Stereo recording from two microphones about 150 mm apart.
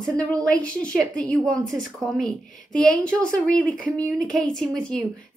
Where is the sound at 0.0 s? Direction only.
5° left (ahead or behind).